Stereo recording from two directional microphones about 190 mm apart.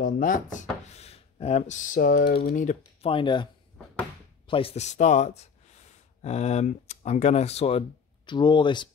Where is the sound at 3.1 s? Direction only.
25° left (ahead or behind).